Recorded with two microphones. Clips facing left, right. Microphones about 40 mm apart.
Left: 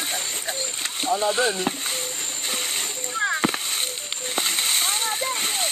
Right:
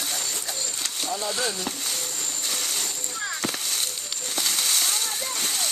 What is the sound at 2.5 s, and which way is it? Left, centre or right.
Splash, left.